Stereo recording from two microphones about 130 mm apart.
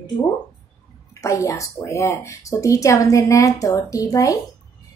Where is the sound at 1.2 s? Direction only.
25° left (ahead or behind).